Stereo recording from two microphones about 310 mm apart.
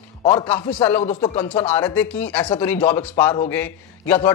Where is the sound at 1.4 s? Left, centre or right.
Centre.